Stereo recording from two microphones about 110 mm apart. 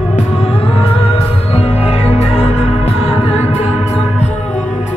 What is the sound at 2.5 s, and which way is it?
Music, 90° left.